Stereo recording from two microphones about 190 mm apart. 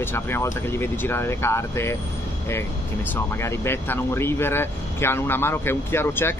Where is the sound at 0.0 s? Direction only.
10° left (ahead or behind).